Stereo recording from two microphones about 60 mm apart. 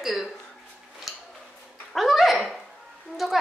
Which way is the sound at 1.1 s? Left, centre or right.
Centre.